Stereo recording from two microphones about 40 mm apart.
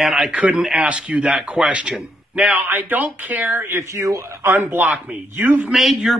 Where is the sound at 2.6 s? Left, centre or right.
Right.